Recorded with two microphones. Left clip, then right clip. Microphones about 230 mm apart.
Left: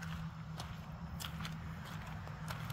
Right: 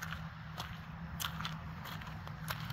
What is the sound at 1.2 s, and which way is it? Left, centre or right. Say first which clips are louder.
Biting: right 7 dB; centre.